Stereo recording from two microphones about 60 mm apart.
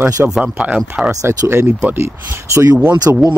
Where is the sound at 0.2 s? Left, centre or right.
Right.